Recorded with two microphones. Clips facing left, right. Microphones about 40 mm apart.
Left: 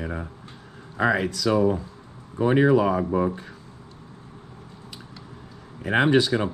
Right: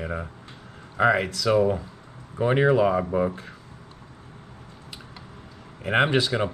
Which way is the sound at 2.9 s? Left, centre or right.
Centre.